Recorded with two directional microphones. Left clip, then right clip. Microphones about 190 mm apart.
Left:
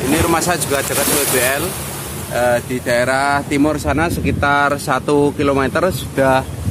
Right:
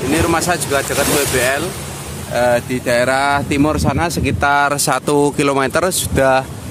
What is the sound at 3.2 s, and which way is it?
Speech, 40° right (ahead or behind).